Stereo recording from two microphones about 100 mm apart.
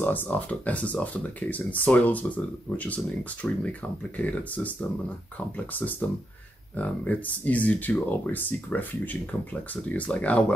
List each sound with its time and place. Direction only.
0.0 s speech: 20° left (ahead or behind)